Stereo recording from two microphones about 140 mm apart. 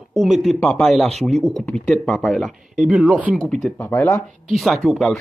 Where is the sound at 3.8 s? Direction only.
15° left (ahead or behind).